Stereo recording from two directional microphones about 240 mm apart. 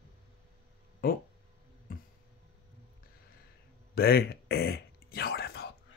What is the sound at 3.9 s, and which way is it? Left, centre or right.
Whispering, left.